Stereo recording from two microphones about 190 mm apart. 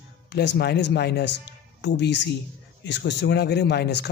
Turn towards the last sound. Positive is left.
turn(degrees=60)  # may be behind; listen again after turning